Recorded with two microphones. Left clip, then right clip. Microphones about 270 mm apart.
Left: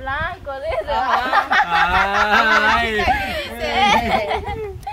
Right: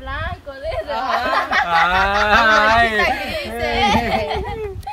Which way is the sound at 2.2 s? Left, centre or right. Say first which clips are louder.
Right 2 dB; centre.